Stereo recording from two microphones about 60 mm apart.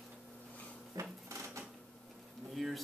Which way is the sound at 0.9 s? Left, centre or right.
Right.